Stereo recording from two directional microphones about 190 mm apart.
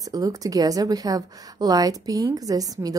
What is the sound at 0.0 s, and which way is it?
A woman's voice, 20° right (ahead or behind).